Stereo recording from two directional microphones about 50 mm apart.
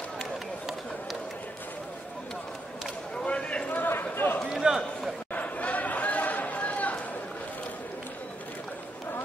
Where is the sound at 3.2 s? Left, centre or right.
Left.